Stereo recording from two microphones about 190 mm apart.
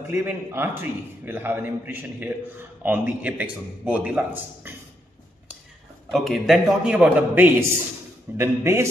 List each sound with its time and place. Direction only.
0.0 s a man's voice: 10° right (ahead or behind)
4.6 s a sound: 10° right (ahead or behind)
6.1 s a man's voice: centre (ahead or behind)